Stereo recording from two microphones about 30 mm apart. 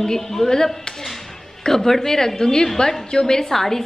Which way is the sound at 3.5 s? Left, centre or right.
Centre.